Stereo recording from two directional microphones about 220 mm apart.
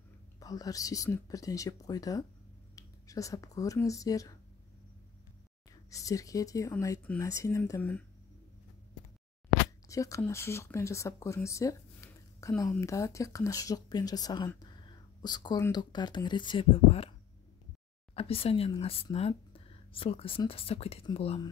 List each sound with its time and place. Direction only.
0.4 s speech: 15° left (ahead or behind)
5.9 s speech: 15° left (ahead or behind)
9.8 s speech: 15° left (ahead or behind)
18.1 s speech: 25° left (ahead or behind)